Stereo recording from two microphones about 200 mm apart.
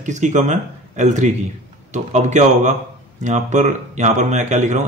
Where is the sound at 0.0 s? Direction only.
35° right (ahead or behind).